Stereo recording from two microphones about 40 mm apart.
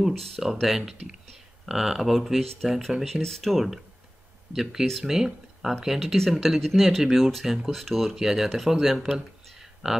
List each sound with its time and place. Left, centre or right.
0.4 s speech: centre
2.6 s speech: centre
3.2 s speech: centre
6.1 s speech: centre
8.2 s speech: centre